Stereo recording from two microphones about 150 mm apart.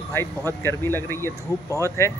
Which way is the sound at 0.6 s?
15° left (ahead or behind).